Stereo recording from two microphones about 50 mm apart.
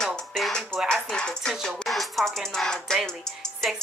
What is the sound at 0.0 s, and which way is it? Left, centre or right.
Music, centre.